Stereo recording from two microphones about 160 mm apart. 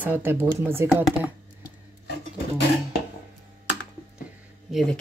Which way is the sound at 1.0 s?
10° right (ahead or behind).